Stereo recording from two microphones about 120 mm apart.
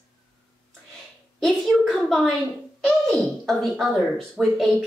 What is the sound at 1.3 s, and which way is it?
Speech, 5° left (ahead or behind).